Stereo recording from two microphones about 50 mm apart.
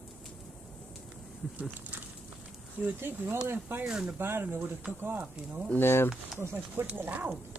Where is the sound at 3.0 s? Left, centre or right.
Right.